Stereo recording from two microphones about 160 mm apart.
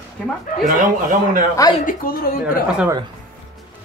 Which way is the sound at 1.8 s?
60° left (ahead or behind).